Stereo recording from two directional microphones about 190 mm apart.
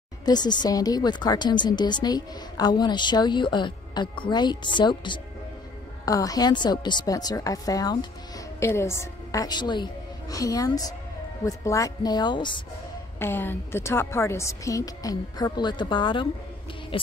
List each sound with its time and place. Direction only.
0.2 s a woman's voice: 20° left (ahead or behind)
13.2 s a woman's voice: 10° left (ahead or behind)
16.9 s a sound: 25° left (ahead or behind)